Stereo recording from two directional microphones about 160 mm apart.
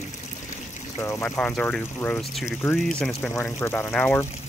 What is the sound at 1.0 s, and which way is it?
Speech, 20° left (ahead or behind).